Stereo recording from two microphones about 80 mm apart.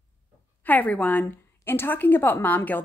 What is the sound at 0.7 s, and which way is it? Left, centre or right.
A woman's voice, centre.